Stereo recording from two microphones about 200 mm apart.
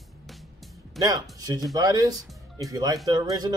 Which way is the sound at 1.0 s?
20° right (ahead or behind).